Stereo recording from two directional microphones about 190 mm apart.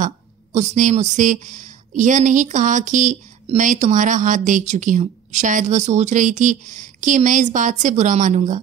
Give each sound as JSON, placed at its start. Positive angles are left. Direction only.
{"t": 0.0, "sound": "speech", "side_deg": -40}